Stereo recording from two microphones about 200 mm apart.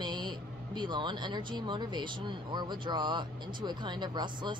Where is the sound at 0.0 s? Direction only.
20° right (ahead or behind).